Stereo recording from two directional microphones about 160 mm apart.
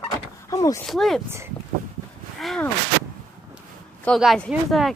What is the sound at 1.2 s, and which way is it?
Speech, 15° right (ahead or behind).